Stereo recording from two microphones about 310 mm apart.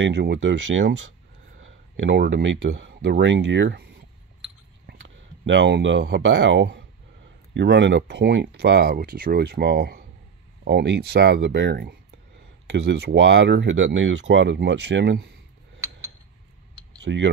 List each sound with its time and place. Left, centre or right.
0.0 s speech: right
4.8 s speech: right
17.0 s speech: right